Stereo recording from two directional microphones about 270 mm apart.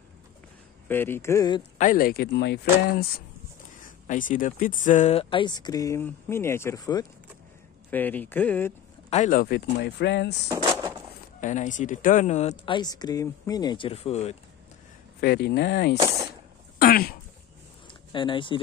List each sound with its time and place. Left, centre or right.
0.8 s speech: centre
1.8 s speech: left; by 8.7 s centre
9.1 s speech: left
10.5 s a sound: centre
11.4 s speech: left
15.1 s speech: left
16.7 s a sound: left
18.1 s speech: centre